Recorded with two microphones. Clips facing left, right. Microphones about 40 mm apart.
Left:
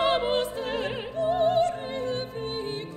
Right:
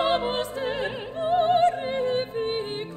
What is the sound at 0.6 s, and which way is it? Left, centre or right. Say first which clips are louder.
Opera: right 2 dB; right.